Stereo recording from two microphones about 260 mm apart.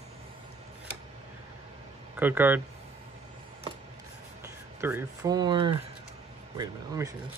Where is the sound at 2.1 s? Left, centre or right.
Centre.